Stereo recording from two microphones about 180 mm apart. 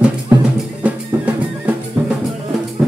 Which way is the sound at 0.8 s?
5° right (ahead or behind).